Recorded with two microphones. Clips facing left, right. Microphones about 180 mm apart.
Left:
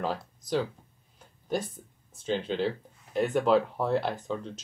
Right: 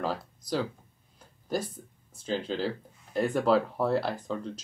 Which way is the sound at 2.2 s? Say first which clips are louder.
Left 2 dB; centre (ahead or behind).